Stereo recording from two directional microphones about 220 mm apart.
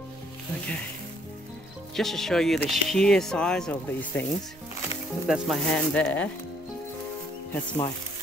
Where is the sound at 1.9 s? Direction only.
Centre (ahead or behind).